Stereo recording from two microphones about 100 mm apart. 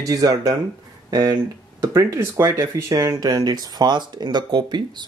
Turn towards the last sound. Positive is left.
turn(degrees=-45)  # may be behind; listen again after turning